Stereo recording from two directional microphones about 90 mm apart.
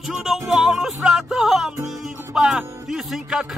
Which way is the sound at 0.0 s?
5° right (ahead or behind).